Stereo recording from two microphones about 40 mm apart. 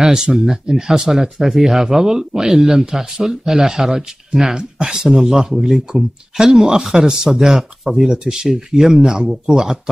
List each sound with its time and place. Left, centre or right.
0.1 s speech: centre